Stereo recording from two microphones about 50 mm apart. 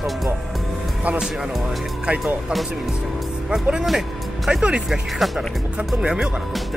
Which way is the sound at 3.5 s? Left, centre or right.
Centre.